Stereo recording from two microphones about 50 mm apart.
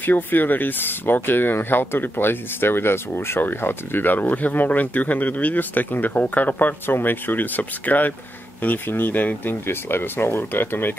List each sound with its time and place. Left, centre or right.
0.0 s speech: left